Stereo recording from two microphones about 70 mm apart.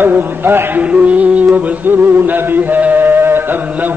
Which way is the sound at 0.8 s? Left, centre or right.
Centre.